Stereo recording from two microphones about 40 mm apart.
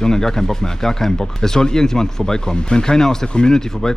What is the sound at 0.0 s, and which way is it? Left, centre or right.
Speech, centre.